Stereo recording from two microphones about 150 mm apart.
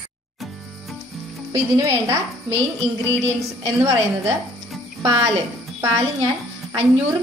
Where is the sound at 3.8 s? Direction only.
20° right (ahead or behind).